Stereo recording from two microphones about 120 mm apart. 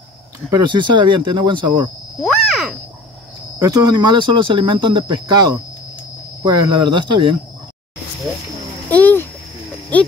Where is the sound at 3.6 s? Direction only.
35° right (ahead or behind).